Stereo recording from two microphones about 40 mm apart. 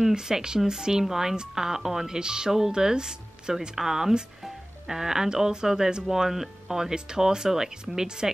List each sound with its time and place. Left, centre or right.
0.1 s speech: centre